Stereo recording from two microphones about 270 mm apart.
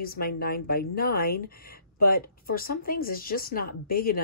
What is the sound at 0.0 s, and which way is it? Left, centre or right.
Speech, left.